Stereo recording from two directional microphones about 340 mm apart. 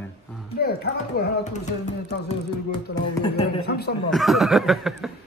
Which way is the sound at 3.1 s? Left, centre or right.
Centre.